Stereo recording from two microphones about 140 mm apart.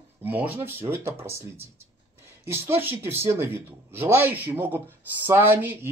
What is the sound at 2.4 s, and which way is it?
Speech, 15° right (ahead or behind).